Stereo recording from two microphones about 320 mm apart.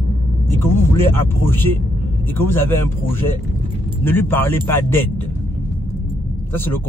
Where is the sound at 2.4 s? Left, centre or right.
Centre.